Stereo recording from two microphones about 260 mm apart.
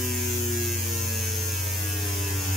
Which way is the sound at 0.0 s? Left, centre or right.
Centre.